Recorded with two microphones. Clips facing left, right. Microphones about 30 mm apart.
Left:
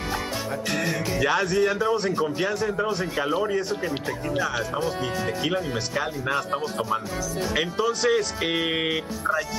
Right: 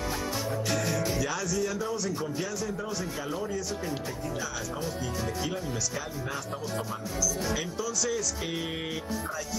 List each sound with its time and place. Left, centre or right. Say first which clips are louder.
0.7 s speech: left 4 dB; left